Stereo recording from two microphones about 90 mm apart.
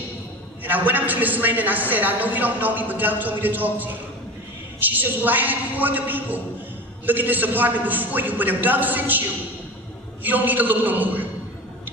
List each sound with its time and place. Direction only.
0.7 s a woman's voice: 20° right (ahead or behind)
10.2 s a woman's voice: 20° right (ahead or behind)